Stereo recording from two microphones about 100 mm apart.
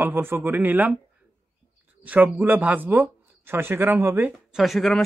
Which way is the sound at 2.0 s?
15° right (ahead or behind).